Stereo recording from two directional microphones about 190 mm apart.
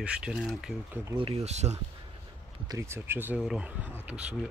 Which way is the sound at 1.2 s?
30° right (ahead or behind).